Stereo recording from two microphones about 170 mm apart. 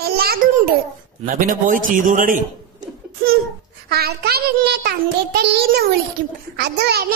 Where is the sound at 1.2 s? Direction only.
55° right (ahead or behind).